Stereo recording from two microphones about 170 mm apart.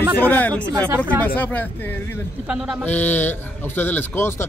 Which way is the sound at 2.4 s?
5° right (ahead or behind).